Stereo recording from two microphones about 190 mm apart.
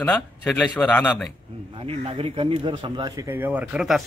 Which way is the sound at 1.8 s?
30° right (ahead or behind).